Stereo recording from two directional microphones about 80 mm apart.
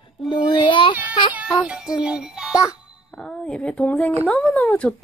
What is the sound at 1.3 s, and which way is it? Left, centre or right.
Music, centre.